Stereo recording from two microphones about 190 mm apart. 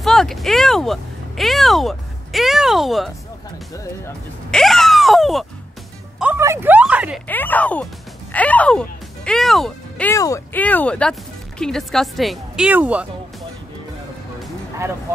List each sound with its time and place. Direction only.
0.0 s speech: centre (ahead or behind)
3.7 s speech: 15° left (ahead or behind)
4.5 s groan: centre (ahead or behind)
6.1 s speech: 10° right (ahead or behind)
7.2 s speech: 10° left (ahead or behind)
10.1 s speech: 15° left (ahead or behind); by 13.0 s 5° right (ahead or behind)